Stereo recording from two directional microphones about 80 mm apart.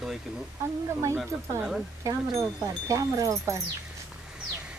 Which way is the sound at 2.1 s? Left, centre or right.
Right.